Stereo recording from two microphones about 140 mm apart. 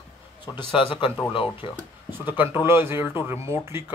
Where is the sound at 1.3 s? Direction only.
35° left (ahead or behind).